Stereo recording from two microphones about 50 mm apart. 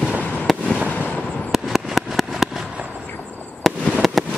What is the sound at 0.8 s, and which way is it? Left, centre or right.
Vehicle, left.